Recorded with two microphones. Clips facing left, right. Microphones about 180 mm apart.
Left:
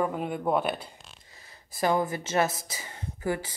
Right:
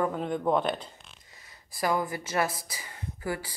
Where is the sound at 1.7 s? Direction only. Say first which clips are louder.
Left 3 dB; 25° left (ahead or behind).